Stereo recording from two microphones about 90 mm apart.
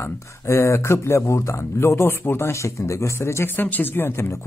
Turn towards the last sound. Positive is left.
turn(degrees=25)  # may be behind; listen again after turning